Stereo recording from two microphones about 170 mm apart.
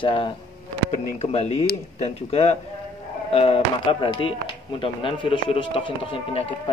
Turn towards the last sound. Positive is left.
turn(degrees=35)  # may be behind; listen again after turning